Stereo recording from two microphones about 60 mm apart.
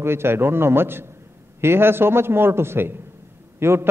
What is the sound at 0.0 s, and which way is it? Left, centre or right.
A man's voice, right.